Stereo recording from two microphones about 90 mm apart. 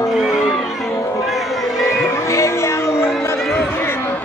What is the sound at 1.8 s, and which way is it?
Crowd, 35° left (ahead or behind).